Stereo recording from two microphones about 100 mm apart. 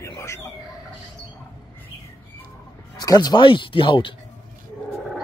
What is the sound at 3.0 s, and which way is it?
Speech, 40° left (ahead or behind).